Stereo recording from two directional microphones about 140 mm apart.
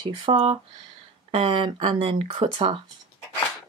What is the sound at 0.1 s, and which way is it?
Speech, 35° right (ahead or behind).